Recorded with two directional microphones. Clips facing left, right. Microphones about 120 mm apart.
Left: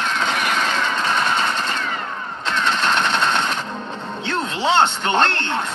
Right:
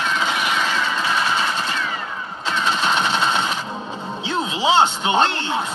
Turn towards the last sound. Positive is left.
turn(degrees=-5)  # may be behind; listen again after turning